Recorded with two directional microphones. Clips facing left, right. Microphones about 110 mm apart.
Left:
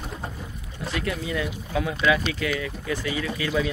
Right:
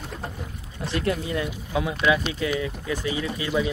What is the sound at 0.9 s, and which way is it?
Speech, 35° right (ahead or behind).